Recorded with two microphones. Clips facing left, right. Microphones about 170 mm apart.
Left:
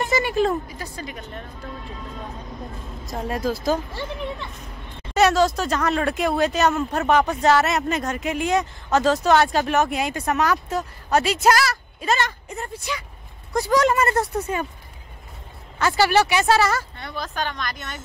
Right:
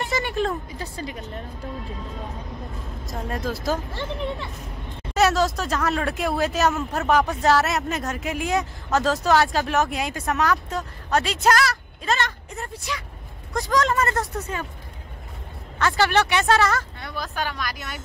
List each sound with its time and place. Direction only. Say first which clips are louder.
0.1 s a sound: left 4 dB; 5° left (ahead or behind)
0.7 s a woman's voice: right 1 dB; 25° right (ahead or behind)
3.1 s speech: left 4 dB; centre (ahead or behind)
5.1 s speech: left 2 dB; centre (ahead or behind)
13.7 s speech: left 3 dB; 15° left (ahead or behind)
15.8 s speech: left 2 dB; 5° left (ahead or behind)
17.2 s speech: left 1 dB; 5° right (ahead or behind)